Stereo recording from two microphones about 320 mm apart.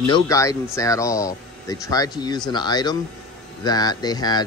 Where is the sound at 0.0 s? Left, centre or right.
Centre.